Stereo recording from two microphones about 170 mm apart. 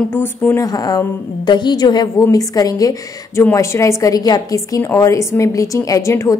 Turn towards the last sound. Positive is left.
turn(degrees=15)  # may be behind; listen again after turning